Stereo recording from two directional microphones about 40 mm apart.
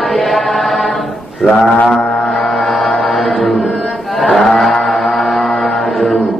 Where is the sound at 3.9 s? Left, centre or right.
Centre.